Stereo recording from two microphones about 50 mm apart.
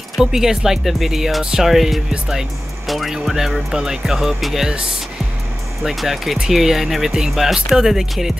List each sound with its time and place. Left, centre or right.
0.2 s speech: centre
5.8 s speech: centre